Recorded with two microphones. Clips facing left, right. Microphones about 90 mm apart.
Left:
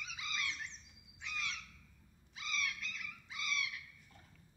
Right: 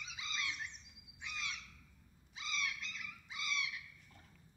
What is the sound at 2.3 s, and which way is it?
Frog, 25° right (ahead or behind).